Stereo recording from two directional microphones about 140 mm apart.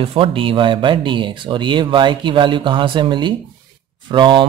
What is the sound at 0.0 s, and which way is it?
Speech, 40° right (ahead or behind).